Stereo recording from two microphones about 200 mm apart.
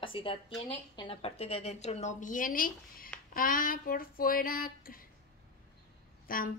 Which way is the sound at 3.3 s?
45° left (ahead or behind).